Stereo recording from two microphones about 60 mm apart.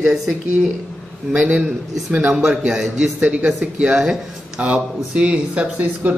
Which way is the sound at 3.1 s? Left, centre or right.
Right.